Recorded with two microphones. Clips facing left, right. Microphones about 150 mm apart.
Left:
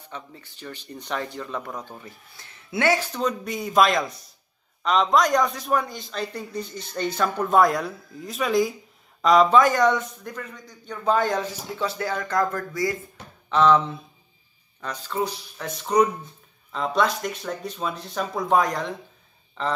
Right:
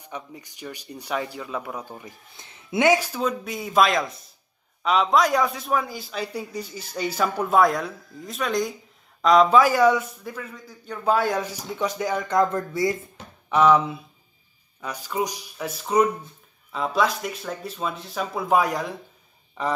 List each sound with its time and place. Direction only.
0.0 s speech: 15° right (ahead or behind)
3.1 s a man's voice: 5° right (ahead or behind)
11.4 s speech: 15° right (ahead or behind)
13.5 s a man's voice: 10° right (ahead or behind)